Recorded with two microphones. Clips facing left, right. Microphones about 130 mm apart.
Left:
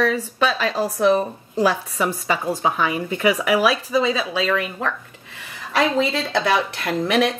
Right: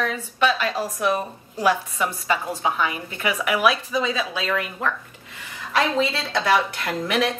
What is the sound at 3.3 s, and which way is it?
Speech, 35° left (ahead or behind).